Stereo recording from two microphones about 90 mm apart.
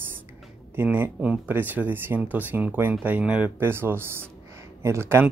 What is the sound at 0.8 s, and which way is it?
Speech, 20° right (ahead or behind).